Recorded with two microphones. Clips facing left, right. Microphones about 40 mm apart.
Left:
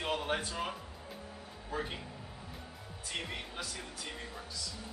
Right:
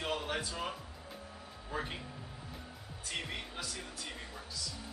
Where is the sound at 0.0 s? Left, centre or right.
Centre.